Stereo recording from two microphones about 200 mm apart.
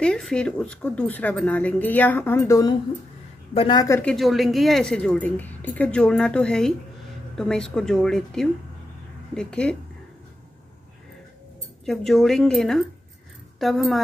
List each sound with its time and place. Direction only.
0.0 s a woman's voice: 5° left (ahead or behind)
4.0 s a woman's voice: centre (ahead or behind)
11.8 s a woman's voice: centre (ahead or behind)